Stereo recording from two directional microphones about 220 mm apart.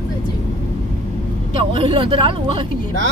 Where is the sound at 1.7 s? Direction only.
25° right (ahead or behind).